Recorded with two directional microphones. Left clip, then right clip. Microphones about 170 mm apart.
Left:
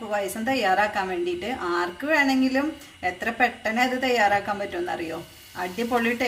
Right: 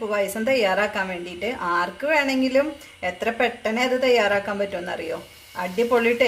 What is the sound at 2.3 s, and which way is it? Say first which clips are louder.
A woman's voice: right 3 dB; 45° right (ahead or behind).